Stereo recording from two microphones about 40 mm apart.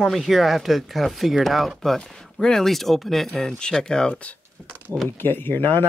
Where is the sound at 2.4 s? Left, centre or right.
Centre.